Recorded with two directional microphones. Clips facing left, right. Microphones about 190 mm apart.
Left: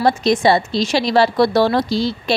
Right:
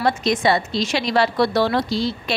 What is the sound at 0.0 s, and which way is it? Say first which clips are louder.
A woman's voice: left 4 dB; 35° left (ahead or behind).